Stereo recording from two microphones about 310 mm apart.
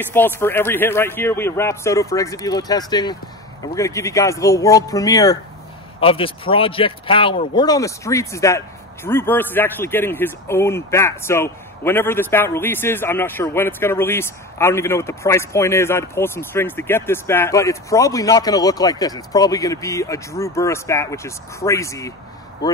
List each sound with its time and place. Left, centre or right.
0.0 s a man's voice: centre